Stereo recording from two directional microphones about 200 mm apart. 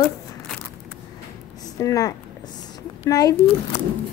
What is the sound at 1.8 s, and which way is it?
Speech, 15° left (ahead or behind).